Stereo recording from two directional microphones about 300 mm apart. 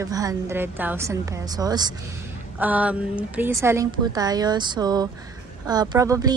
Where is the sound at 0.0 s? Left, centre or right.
Centre.